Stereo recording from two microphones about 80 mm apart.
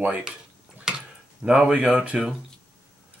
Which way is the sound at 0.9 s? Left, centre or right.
Centre.